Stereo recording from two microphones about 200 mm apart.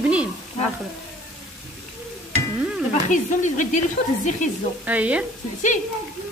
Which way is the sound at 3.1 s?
40° left (ahead or behind).